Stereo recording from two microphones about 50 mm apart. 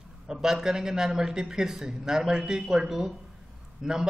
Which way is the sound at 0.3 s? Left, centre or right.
Centre.